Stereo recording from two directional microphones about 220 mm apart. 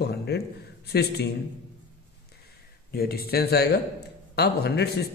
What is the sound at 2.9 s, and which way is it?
A man's voice, 45° left (ahead or behind).